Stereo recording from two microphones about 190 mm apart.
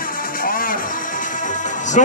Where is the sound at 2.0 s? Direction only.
40° left (ahead or behind).